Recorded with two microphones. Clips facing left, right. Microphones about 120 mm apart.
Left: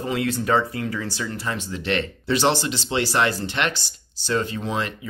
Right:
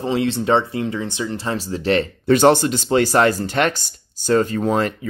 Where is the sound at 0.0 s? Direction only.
25° right (ahead or behind).